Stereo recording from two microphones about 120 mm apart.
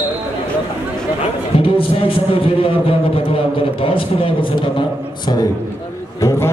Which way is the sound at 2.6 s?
50° left (ahead or behind).